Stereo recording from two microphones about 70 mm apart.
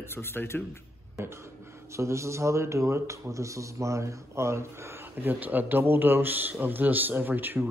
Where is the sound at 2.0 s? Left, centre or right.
Right.